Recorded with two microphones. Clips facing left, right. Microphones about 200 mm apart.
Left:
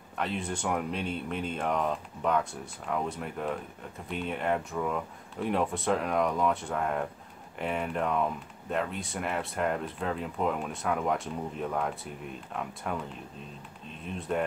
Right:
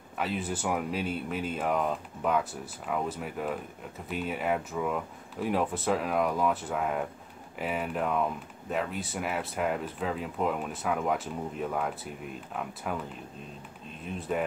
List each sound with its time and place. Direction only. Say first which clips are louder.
0.2 s speech: right 1 dB; 5° right (ahead or behind)
14.0 s speech: even; centre (ahead or behind)